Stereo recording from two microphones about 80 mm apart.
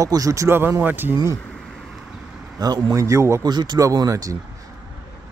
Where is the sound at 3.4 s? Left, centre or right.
Right.